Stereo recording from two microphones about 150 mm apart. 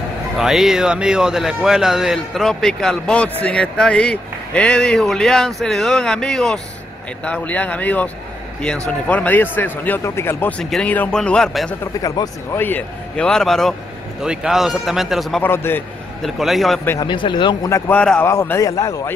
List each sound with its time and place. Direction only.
0.4 s speech: centre (ahead or behind); by 10.5 s 15° left (ahead or behind)
10.6 s speech: 5° left (ahead or behind)
11.8 s speech: 20° left (ahead or behind)
12.6 s speech: 10° left (ahead or behind)
15.4 s speech: 15° left (ahead or behind)
16.2 s speech: centre (ahead or behind)
17.0 s speech: 30° left (ahead or behind)
17.6 s speech: 20° left (ahead or behind)
17.9 s speech: 10° left (ahead or behind)
18.3 s speech: 20° left (ahead or behind)